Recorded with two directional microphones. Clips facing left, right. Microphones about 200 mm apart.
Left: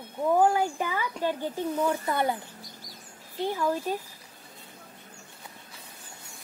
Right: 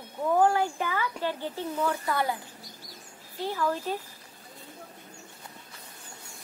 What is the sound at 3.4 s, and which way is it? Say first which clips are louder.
Speech: left 2 dB; 15° left (ahead or behind).